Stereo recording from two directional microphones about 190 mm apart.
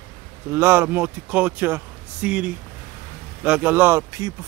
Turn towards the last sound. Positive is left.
turn(degrees=-15)  # may be behind; listen again after turning